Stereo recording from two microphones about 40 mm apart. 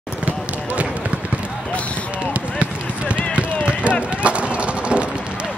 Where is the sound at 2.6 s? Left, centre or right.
Right.